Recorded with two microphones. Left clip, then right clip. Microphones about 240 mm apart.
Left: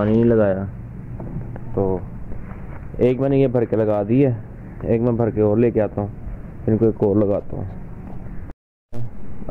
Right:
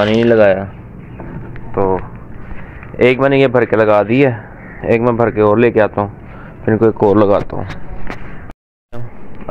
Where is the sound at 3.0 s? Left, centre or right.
Centre; by 7.6 s right.